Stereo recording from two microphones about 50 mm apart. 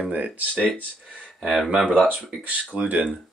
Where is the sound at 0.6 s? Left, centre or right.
Right.